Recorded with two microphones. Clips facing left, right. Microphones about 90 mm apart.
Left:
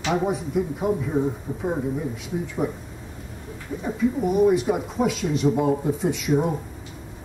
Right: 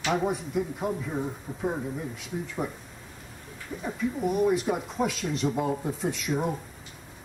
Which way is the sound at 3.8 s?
Centre (ahead or behind).